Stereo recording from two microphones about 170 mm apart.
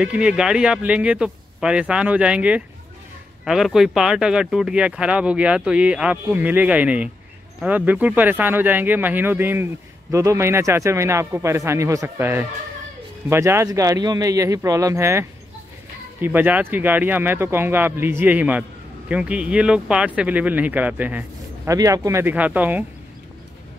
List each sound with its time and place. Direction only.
0.0 s a man's voice: 5° right (ahead or behind)